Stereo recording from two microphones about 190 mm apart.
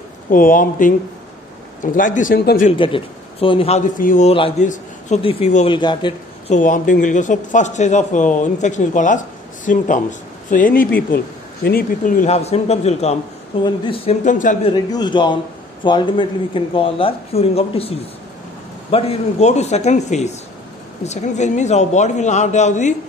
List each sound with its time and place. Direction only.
0.3 s speech: 45° left (ahead or behind)
2.7 s speech: 25° left (ahead or behind); by 4.3 s 40° left (ahead or behind)
4.3 s a man's voice: 30° left (ahead or behind)
5.8 s speech: 25° left (ahead or behind)
6.5 s speech: 45° left (ahead or behind); by 14.1 s 25° left (ahead or behind)
14.2 s speech: 40° left (ahead or behind)
14.6 s speech: 25° left (ahead or behind); by 22.9 s 40° left (ahead or behind)